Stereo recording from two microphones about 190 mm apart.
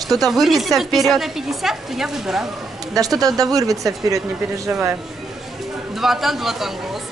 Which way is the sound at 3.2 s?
20° right (ahead or behind).